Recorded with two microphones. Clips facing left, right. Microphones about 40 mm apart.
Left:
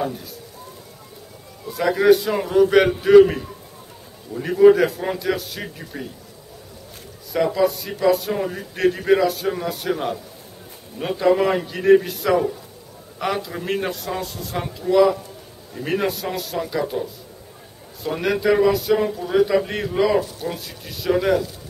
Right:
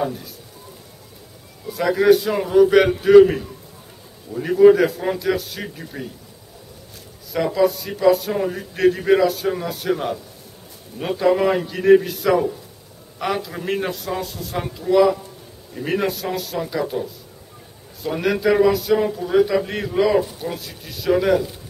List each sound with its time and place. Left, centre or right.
0.0 s speech: centre
1.7 s a man's voice: centre
7.3 s a man's voice: centre